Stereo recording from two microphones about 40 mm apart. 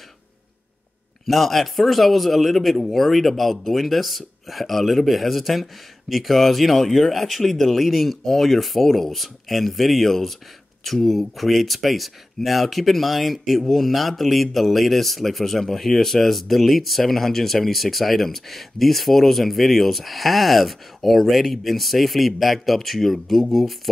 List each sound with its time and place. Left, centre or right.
1.2 s speech: centre